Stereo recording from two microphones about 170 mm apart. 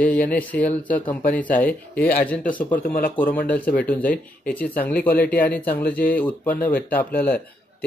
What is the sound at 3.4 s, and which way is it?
Speech, 10° left (ahead or behind).